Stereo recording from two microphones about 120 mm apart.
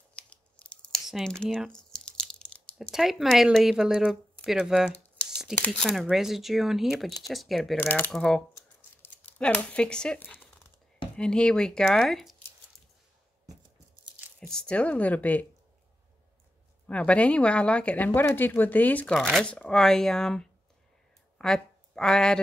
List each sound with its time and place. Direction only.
0.1 s tearing: 10° left (ahead or behind)
1.0 s a sound: centre (ahead or behind)
2.9 s speech: centre (ahead or behind)
7.8 s speech: 15° left (ahead or behind)
8.1 s speech: 5° left (ahead or behind)
8.5 s a sound: 20° left (ahead or behind)
11.1 s speech: 5° left (ahead or behind)
14.5 s speech: 5° left (ahead or behind)
16.8 s speech: 10° left (ahead or behind)
19.1 s speech: centre (ahead or behind)